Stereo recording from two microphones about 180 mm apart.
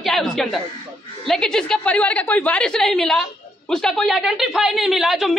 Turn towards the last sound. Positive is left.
turn(degrees=0)  # may be behind; listen again after turning